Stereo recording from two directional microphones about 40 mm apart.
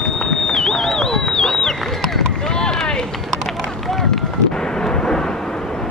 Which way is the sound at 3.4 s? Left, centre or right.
Centre.